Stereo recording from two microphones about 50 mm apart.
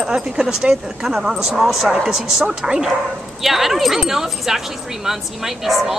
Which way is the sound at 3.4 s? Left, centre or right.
Centre.